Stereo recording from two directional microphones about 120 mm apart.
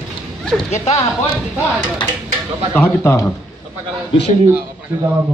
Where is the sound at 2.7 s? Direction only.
20° left (ahead or behind).